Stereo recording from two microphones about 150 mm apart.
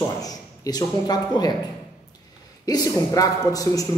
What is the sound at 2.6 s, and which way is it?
Speech, 25° left (ahead or behind).